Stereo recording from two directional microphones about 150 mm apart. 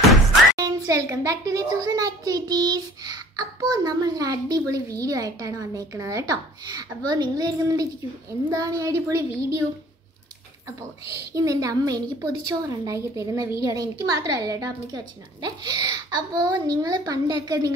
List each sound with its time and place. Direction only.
0.6 s a child's voice: 25° right (ahead or behind)
11.3 s a child's voice: 25° right (ahead or behind)